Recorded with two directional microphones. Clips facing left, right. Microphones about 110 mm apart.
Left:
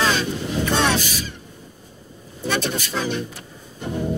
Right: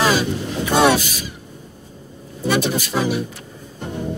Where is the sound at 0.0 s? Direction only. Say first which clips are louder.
Right 3 dB; 10° right (ahead or behind).